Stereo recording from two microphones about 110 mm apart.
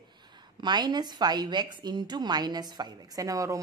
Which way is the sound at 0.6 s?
40° right (ahead or behind).